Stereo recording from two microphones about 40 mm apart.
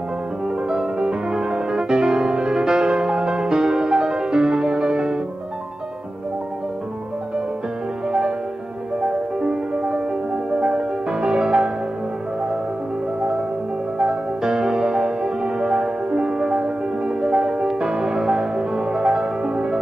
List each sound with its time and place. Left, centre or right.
0.7 s music: centre
9.4 s music: centre
13.9 s music: centre